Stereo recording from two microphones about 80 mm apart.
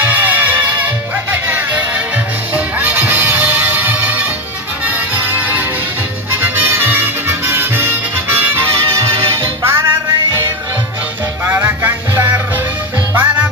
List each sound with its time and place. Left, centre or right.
0.0 s music: right
9.6 s music: right
11.4 s music: right